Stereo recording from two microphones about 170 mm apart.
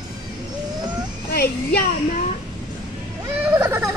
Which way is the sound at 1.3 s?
65° left (ahead or behind).